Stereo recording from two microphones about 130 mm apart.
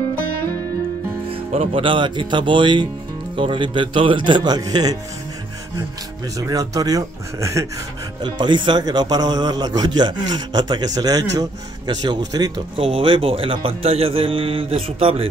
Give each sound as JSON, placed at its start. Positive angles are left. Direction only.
{"t": 1.3, "sound": "speech", "side_deg": -50}
{"t": 6.3, "sound": "speech", "side_deg": -25}
{"t": 8.2, "sound": "speech", "side_deg": -35}